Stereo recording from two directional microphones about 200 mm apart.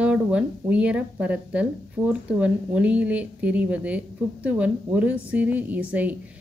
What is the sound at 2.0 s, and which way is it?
Speech, 20° right (ahead or behind).